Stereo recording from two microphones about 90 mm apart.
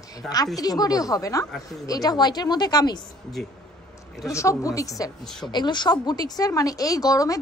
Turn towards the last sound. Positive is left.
turn(degrees=40)  # may be behind; listen again after turning